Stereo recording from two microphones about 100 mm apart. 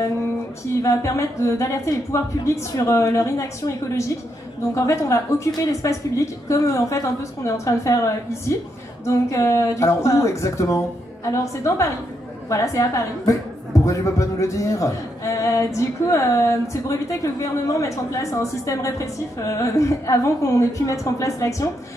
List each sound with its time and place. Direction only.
0.8 s a woman's voice: 30° left (ahead or behind)